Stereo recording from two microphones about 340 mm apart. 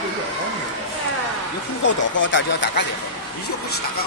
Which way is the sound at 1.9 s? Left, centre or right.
Left.